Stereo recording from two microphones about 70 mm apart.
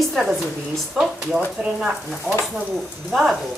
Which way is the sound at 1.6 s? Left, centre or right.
Centre.